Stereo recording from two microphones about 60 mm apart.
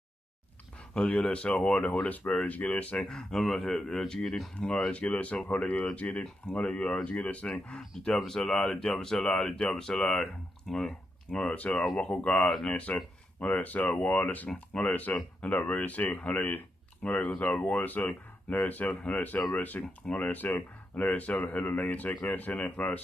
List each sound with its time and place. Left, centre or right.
0.9 s speech: centre
3.1 s speech: centre
8.3 s speech: centre
11.4 s speech: left
12.4 s speech: centre
12.7 s speech: left
17.0 s speech: centre
17.6 s speech: left